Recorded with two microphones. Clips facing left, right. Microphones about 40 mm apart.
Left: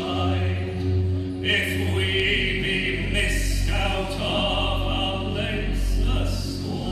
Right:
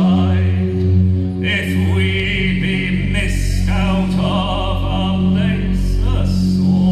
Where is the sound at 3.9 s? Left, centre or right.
Right.